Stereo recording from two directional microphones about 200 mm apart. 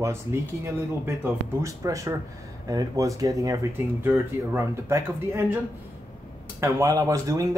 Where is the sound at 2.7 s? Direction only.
20° right (ahead or behind).